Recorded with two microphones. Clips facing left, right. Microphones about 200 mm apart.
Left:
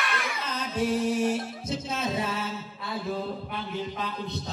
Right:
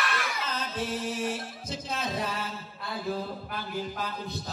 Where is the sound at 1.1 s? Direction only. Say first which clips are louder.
Left 6 dB; 30° left (ahead or behind).